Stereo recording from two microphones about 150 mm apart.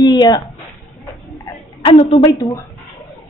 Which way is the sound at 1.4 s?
35° left (ahead or behind).